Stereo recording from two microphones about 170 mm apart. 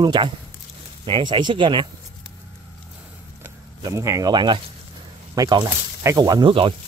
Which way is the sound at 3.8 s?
20° right (ahead or behind).